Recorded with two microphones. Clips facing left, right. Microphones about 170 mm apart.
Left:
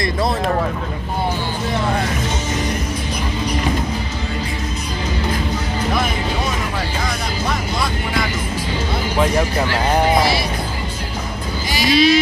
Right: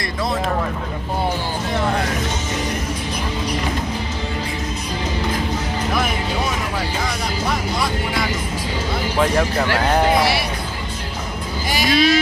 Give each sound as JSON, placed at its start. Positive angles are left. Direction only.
{"t": 9.2, "sound": "speech", "side_deg": 10}
{"t": 11.7, "sound": "speech", "side_deg": -50}